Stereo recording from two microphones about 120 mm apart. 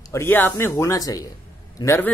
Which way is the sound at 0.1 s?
20° left (ahead or behind).